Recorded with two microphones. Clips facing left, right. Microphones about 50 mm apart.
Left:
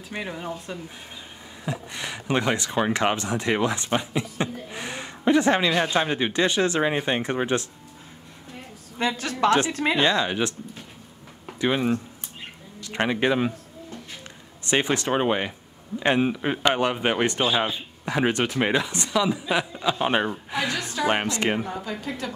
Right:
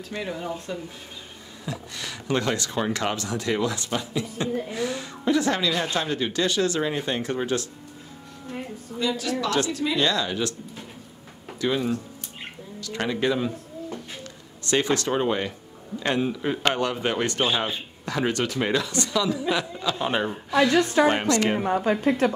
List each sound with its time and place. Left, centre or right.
0.1 s speech: centre
8.9 s a woman's voice: left
9.9 s speech: left
11.6 s speech: left
14.6 s speech: left
21.0 s speech: right